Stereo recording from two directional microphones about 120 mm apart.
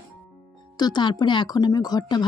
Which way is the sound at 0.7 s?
35° left (ahead or behind).